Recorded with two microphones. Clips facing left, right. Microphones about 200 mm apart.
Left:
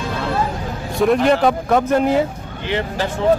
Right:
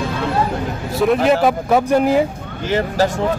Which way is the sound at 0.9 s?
5° right (ahead or behind).